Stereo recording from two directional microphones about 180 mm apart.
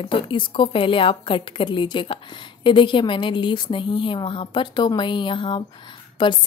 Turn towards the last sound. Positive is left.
turn(degrees=25)  # may be behind; listen again after turning